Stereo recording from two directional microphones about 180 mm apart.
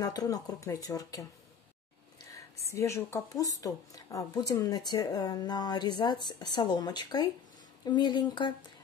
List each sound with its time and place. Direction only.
0.0 s speech: 20° left (ahead or behind)
2.3 s speech: 15° left (ahead or behind)